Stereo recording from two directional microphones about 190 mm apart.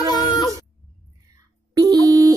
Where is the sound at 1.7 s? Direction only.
20° right (ahead or behind).